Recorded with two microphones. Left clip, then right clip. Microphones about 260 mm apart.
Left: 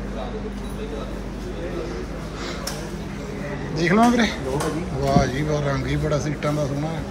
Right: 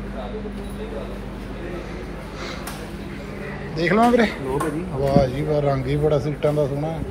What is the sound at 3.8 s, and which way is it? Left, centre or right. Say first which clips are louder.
Speech: right 2 dB; centre.